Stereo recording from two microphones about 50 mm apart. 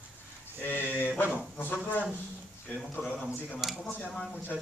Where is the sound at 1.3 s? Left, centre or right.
Left.